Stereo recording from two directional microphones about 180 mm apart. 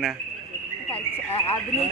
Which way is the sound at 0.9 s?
30° left (ahead or behind).